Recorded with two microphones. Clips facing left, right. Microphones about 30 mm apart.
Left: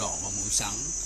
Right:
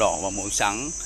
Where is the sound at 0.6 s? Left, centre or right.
Right.